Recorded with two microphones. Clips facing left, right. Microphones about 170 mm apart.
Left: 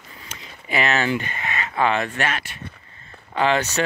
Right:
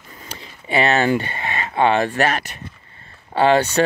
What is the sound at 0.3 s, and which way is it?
Speech, 30° right (ahead or behind).